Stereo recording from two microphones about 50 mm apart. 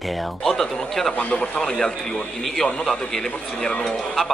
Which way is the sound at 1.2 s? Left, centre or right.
Left.